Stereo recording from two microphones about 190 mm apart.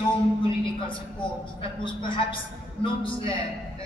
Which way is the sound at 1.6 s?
25° left (ahead or behind).